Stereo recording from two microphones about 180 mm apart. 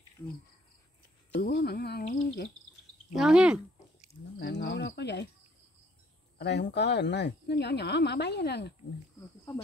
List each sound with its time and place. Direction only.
1.4 s speech: 60° left (ahead or behind)
3.2 s a sound: 5° right (ahead or behind)
4.4 s cricket: 70° left (ahead or behind)
6.3 s speech: 70° left (ahead or behind)